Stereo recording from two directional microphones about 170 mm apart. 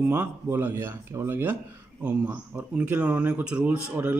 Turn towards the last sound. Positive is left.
turn(degrees=-10)  # may be behind; listen again after turning